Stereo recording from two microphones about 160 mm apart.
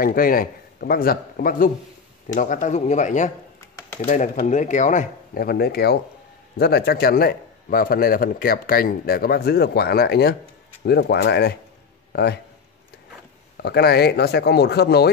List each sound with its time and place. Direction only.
0.0 s speech: 65° left (ahead or behind)
2.2 s speech: 50° left (ahead or behind)
5.4 s a man's voice: 75° left (ahead or behind)
13.6 s speech: 85° left